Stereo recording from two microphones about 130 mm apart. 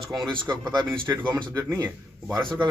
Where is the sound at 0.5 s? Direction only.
35° right (ahead or behind).